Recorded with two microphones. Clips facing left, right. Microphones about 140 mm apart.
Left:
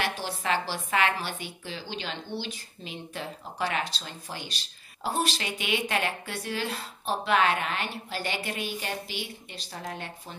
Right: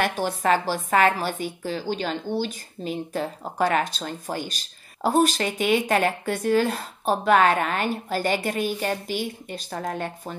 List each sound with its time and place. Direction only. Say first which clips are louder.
0.0 s a woman's voice: right 7 dB; 50° right (ahead or behind)